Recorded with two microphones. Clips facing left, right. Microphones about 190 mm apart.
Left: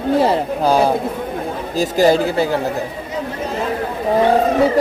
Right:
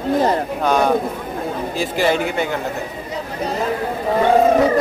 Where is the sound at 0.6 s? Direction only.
30° left (ahead or behind).